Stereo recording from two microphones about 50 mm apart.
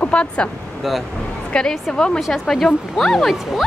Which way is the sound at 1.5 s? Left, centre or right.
Centre.